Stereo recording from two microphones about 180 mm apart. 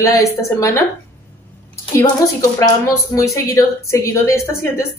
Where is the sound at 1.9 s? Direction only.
20° left (ahead or behind).